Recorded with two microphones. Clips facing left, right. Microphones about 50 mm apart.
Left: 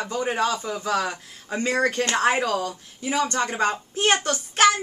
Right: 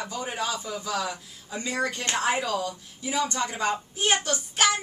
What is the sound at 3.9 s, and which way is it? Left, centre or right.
Child singing, left.